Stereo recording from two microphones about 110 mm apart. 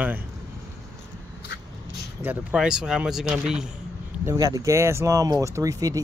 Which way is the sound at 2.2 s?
20° right (ahead or behind).